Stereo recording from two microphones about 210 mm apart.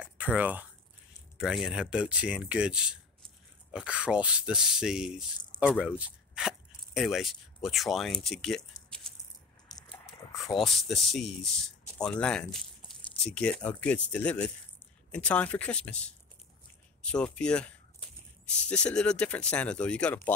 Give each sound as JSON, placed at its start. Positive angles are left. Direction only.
{"t": 0.0, "sound": "speech", "side_deg": -5}
{"t": 9.7, "sound": "a sound", "side_deg": 20}
{"t": 10.6, "sound": "speech", "side_deg": 0}
{"t": 18.7, "sound": "speech", "side_deg": 5}